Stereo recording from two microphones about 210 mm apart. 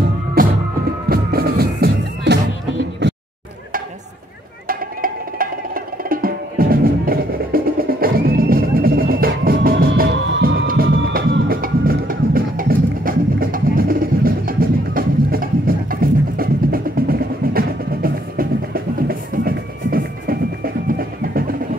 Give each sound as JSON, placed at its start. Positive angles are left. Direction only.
{"t": 1.0, "sound": "music", "side_deg": -45}
{"t": 4.6, "sound": "music", "side_deg": -45}